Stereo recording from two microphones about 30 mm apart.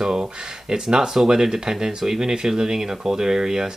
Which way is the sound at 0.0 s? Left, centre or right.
Right.